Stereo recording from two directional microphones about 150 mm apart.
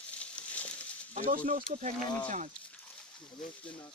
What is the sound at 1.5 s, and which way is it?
Speech, 60° right (ahead or behind).